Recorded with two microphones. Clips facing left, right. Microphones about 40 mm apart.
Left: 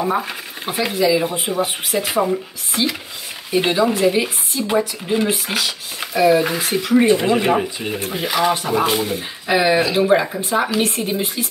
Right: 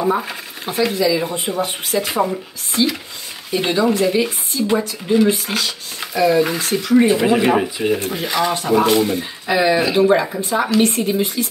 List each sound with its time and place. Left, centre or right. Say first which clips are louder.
0.0 s speech: right 1 dB; centre
6.7 s speech: left 1 dB; centre
7.0 s speech: right 1 dB; centre
9.5 s speech: even; centre
9.9 s speech: right 1 dB; centre